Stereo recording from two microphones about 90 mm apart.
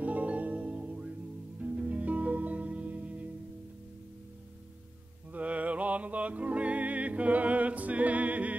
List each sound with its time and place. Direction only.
0.0 s music: 15° right (ahead or behind)
5.3 s music: 15° right (ahead or behind)